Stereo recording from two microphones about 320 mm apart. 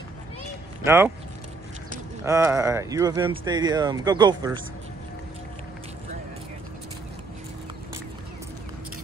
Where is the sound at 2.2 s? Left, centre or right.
Centre.